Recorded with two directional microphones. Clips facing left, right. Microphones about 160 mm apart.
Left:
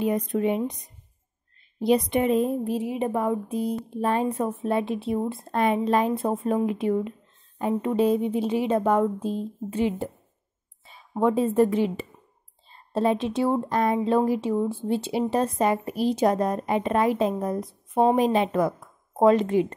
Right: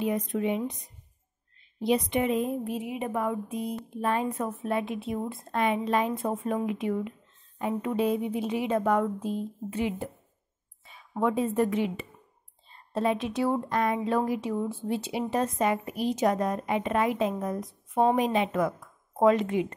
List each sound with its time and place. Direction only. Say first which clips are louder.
0.0 s a woman's voice: left 4 dB; 40° left (ahead or behind)
1.8 s a woman's voice: left 4 dB; 35° left (ahead or behind)